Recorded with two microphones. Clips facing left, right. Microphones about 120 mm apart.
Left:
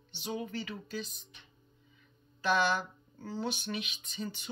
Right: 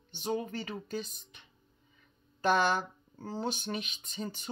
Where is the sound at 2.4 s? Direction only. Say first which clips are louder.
Right 2 dB; 45° right (ahead or behind).